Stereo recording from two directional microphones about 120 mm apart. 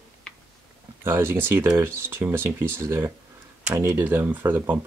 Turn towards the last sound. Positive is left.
turn(degrees=-15)  # may be behind; listen again after turning